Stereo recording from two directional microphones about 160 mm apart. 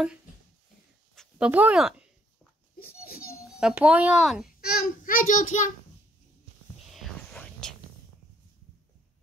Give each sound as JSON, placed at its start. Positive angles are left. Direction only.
{"t": 1.1, "sound": "a sound", "side_deg": 5}
{"t": 1.5, "sound": "speech", "side_deg": -10}
{"t": 2.8, "sound": "baby cry", "side_deg": 70}
{"t": 3.5, "sound": "speech", "side_deg": -5}
{"t": 4.6, "sound": "a child's voice", "side_deg": 70}
{"t": 6.9, "sound": "whispering", "side_deg": 0}